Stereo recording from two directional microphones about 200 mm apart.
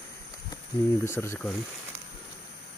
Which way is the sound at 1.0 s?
10° left (ahead or behind).